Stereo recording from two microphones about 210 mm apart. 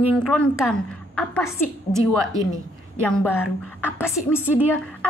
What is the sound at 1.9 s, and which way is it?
Speech, 15° right (ahead or behind).